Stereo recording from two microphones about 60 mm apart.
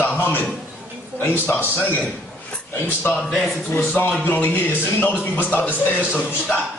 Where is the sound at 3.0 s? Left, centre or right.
Left.